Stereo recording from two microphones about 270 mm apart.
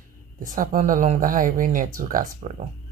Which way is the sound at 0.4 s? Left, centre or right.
Right.